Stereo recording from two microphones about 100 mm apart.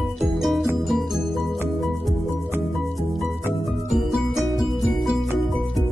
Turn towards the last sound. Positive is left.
turn(degrees=0)  # may be behind; listen again after turning